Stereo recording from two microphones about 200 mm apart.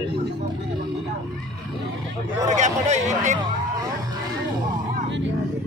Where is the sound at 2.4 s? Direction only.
35° right (ahead or behind).